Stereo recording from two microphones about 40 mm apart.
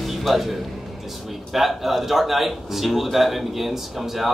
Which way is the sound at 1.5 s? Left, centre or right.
Centre.